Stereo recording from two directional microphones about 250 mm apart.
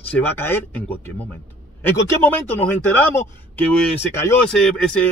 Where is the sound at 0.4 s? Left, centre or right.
Centre.